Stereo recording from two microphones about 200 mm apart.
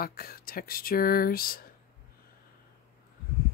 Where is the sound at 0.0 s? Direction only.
50° left (ahead or behind).